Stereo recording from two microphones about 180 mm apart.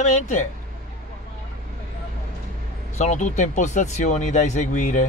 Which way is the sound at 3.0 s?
40° left (ahead or behind).